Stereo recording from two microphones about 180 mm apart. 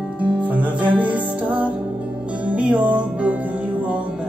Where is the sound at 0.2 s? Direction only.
10° right (ahead or behind).